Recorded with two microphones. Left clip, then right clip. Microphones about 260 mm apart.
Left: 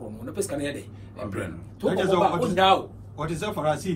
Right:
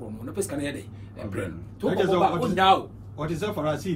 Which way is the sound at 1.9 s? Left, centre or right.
Left.